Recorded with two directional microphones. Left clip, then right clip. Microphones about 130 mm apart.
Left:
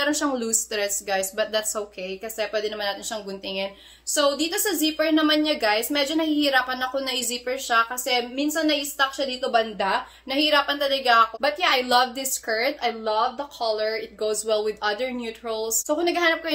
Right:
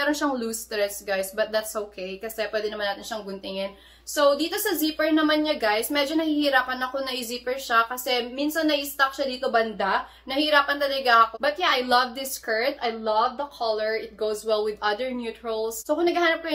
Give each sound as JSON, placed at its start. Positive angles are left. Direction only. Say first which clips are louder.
{"t": 0.0, "sound": "a woman's voice", "louder": "left 1 dB", "side_deg": 35}